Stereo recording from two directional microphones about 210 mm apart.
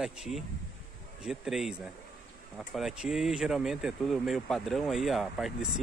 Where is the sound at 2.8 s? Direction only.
Centre (ahead or behind).